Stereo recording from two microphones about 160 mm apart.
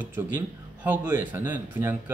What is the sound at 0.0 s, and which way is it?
Speech, 10° right (ahead or behind).